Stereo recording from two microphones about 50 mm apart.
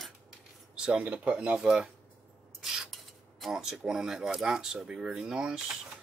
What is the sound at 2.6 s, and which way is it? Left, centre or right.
Rub, centre.